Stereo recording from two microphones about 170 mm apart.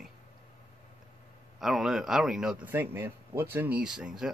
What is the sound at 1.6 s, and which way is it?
Speech, centre (ahead or behind).